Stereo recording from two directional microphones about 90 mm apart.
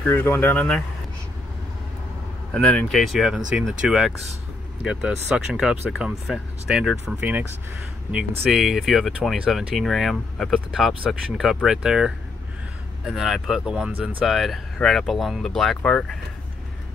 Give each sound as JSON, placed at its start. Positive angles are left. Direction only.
{"t": 0.0, "sound": "speech", "side_deg": 25}
{"t": 2.5, "sound": "speech", "side_deg": 10}
{"t": 7.2, "sound": "speech", "side_deg": -20}
{"t": 8.5, "sound": "speech", "side_deg": -5}